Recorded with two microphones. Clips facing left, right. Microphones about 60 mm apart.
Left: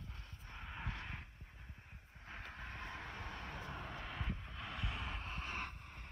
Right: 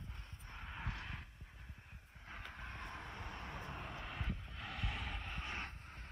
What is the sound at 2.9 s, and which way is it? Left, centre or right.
Vehicle, left.